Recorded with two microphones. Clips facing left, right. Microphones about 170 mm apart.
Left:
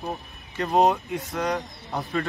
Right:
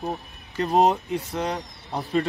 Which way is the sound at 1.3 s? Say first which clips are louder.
Left 3 dB; 20° right (ahead or behind).